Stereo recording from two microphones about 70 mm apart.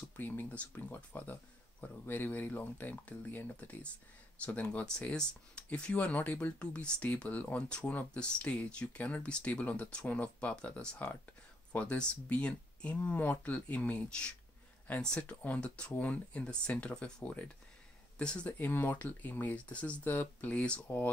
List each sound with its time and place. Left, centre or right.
0.1 s speech: left
18.6 s speech: left